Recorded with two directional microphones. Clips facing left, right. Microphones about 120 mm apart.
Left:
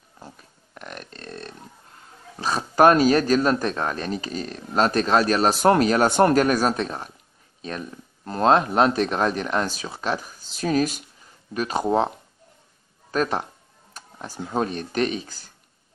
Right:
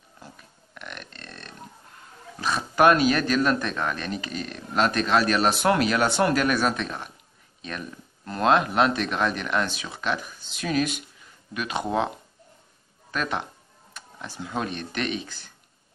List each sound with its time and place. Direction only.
0.2 s a sound: 35° left (ahead or behind)
2.4 s speech: 35° left (ahead or behind)
8.3 s speech: 35° left (ahead or behind)
13.1 s speech: 35° left (ahead or behind)